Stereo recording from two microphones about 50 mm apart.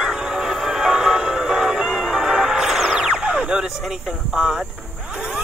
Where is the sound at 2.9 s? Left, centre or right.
Centre.